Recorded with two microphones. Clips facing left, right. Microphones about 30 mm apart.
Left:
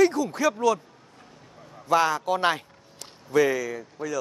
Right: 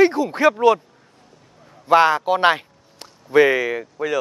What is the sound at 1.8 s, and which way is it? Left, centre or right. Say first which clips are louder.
Speech: right 7 dB; right.